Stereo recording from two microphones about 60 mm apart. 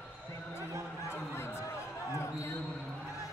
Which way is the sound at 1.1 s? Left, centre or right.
Left.